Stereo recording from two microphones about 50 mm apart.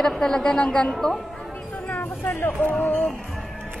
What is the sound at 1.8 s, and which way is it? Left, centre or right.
Music, left.